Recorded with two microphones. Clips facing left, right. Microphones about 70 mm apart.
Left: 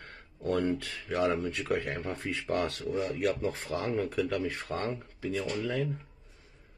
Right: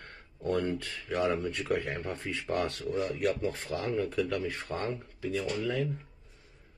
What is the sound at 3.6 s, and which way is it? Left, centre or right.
Speech, left.